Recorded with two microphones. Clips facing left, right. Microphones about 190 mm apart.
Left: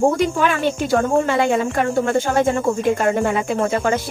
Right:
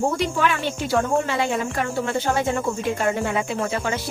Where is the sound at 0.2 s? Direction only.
50° left (ahead or behind).